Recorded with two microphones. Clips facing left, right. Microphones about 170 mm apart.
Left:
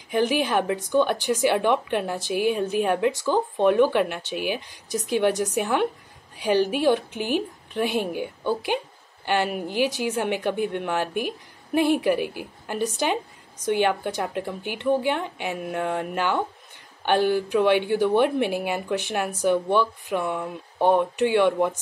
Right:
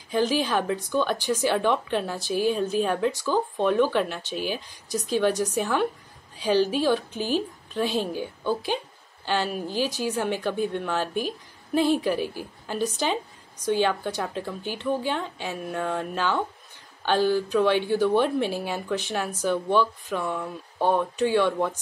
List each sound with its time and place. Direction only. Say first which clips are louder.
0.1 s a woman's voice: left 1 dB; 15° left (ahead or behind)